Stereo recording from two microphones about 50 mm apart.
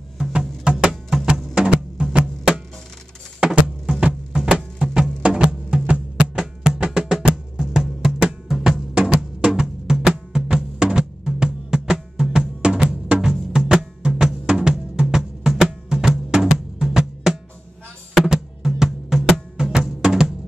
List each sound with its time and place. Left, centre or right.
0.4 s a sound: centre
1.5 s music: centre
6.3 s music: centre